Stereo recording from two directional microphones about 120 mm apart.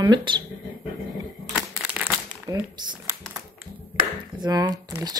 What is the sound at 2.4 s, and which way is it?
Speech, 35° right (ahead or behind).